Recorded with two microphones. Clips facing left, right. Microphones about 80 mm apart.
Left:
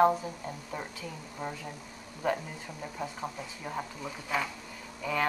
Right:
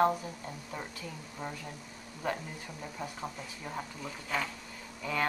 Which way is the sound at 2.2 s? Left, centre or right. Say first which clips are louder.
Left 4 dB; centre.